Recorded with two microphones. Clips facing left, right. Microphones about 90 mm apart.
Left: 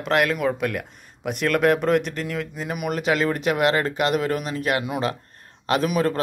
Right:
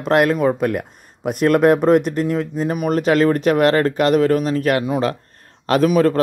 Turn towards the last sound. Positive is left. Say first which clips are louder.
# right 7 dB
turn(degrees=-40)  # may be behind; listen again after turning